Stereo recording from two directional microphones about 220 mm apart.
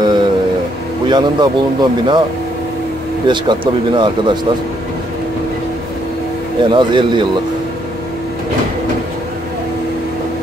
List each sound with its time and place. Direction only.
0.0 s a sound: 20° right (ahead or behind)
1.0 s speech: 20° right (ahead or behind)
3.3 s speech: 20° right (ahead or behind)
6.6 s speech: 20° right (ahead or behind)